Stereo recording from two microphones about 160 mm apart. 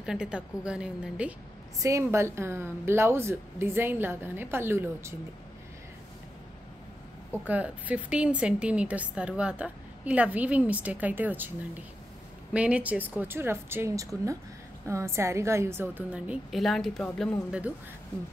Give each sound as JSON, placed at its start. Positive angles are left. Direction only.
{"t": 0.0, "sound": "a woman's voice", "side_deg": -5}
{"t": 1.8, "sound": "a woman's voice", "side_deg": -20}
{"t": 7.4, "sound": "a woman's voice", "side_deg": -10}
{"t": 12.5, "sound": "a woman's voice", "side_deg": -5}
{"t": 17.5, "sound": "a woman's voice", "side_deg": -10}